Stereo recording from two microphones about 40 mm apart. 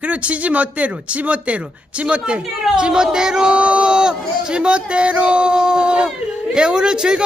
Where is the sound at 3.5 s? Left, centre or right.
Right.